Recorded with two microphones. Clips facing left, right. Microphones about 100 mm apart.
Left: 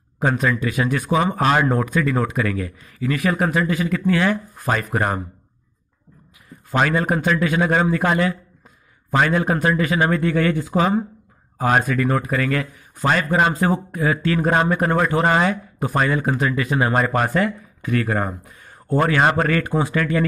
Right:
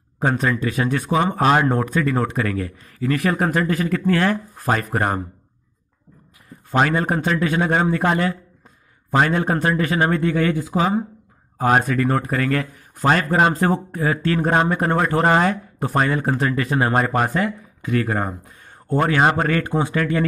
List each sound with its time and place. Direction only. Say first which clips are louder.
0.2 s speech: even; 35° right (ahead or behind)
6.7 s speech: even; 35° right (ahead or behind)
10.2 s speech: even; 20° right (ahead or behind)
11.5 s speech: right 1 dB; 30° right (ahead or behind)
14.5 s speech: even; 25° right (ahead or behind)
17.2 s speech: left 1 dB; 20° right (ahead or behind)